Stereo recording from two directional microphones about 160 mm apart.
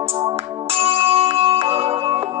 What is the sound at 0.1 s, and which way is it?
Music, 30° right (ahead or behind).